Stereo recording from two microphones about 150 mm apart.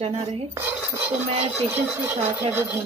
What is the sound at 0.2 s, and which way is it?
Speech, 45° right (ahead or behind).